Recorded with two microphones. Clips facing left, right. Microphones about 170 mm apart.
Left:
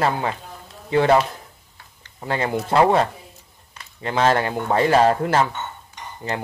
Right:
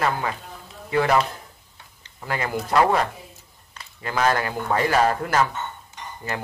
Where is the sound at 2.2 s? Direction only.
25° left (ahead or behind).